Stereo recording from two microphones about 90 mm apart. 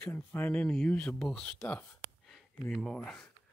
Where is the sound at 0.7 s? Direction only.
5° left (ahead or behind).